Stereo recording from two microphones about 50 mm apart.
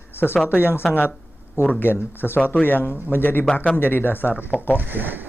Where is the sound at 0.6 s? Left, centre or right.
Left.